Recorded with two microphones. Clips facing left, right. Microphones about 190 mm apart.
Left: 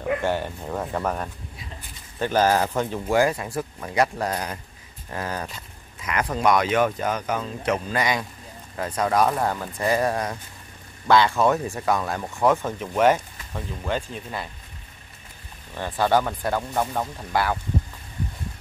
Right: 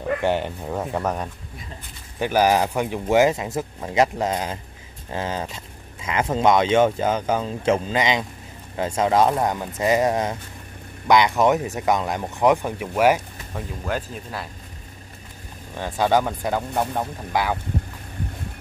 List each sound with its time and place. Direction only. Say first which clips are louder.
0.2 s speech: right 3 dB; 15° right (ahead or behind)
15.7 s speech: right 1 dB; 15° right (ahead or behind)